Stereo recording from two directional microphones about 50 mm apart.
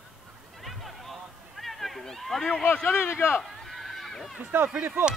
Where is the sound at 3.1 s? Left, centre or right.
Left.